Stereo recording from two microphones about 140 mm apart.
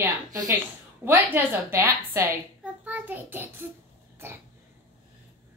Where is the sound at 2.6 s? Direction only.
10° right (ahead or behind).